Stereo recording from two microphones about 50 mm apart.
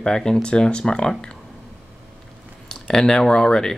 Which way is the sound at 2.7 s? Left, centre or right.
Centre.